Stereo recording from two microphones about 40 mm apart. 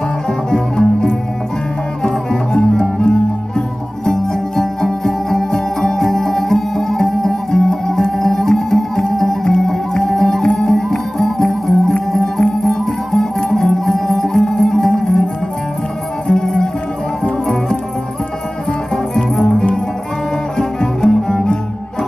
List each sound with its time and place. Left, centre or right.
0.5 s music: centre
2.7 s music: centre
16.3 s music: centre
19.3 s music: centre
20.5 s bowed string instrument: centre